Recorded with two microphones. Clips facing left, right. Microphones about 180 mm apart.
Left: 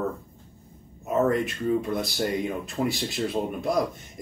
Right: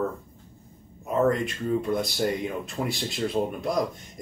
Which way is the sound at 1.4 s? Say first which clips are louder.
Left 1 dB; centre (ahead or behind).